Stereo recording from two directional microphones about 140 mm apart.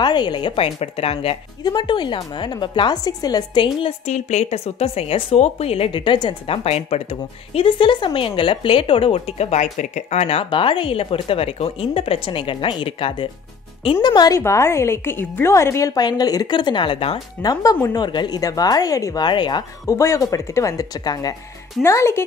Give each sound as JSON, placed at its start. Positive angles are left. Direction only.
{"t": 0.0, "sound": "a woman's voice", "side_deg": 30}
{"t": 1.6, "sound": "a woman's voice", "side_deg": 30}
{"t": 3.8, "sound": "a woman's voice", "side_deg": 55}
{"t": 20.0, "sound": "a woman's voice", "side_deg": 20}